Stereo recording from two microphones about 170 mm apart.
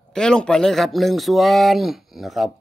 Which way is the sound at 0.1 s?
5° left (ahead or behind).